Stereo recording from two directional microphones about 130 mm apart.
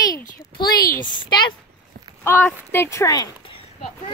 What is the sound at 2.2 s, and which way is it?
A child's voice, 15° left (ahead or behind).